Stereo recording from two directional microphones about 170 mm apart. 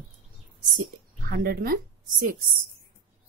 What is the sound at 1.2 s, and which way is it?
Speech, 60° right (ahead or behind).